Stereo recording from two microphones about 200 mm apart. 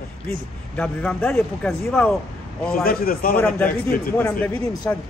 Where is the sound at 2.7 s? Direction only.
45° left (ahead or behind).